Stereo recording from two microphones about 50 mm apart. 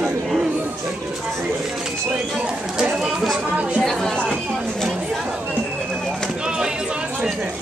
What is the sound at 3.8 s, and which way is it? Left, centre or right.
Chatter, centre.